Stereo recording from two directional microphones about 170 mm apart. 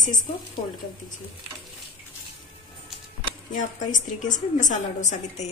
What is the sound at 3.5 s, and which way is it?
A woman's voice, 45° left (ahead or behind).